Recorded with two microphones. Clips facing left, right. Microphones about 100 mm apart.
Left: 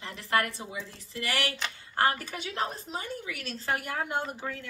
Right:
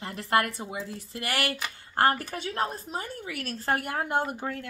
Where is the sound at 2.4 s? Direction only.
45° right (ahead or behind).